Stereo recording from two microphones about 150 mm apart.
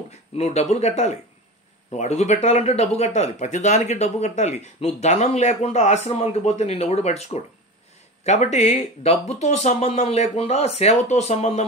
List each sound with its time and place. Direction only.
0.4 s speech: 45° left (ahead or behind)